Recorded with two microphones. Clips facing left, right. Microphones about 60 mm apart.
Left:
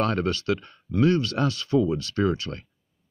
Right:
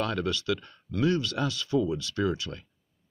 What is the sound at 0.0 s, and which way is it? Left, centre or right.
Speech, left.